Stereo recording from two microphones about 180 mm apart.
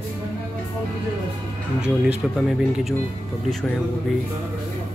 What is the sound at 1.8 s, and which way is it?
Speech, 5° right (ahead or behind).